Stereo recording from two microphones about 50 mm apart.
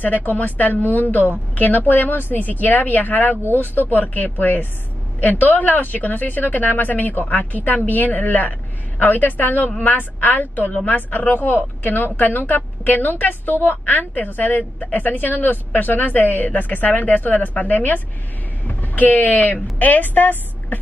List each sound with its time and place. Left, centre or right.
0.0 s a woman's voice: left